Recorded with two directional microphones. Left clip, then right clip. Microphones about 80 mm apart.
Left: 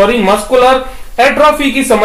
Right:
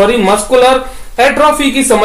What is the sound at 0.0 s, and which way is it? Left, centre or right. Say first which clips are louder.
Speech: even; right.